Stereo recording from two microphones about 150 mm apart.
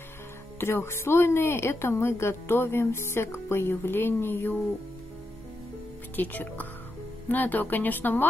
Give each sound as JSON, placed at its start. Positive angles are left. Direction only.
{"t": 0.6, "sound": "a woman's voice", "side_deg": 15}
{"t": 6.1, "sound": "a woman's voice", "side_deg": 10}